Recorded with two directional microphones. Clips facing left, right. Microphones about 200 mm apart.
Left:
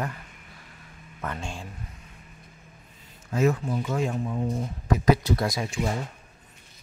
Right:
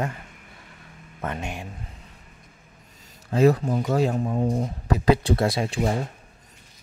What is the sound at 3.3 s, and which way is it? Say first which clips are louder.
Speech: right 5 dB; 35° right (ahead or behind).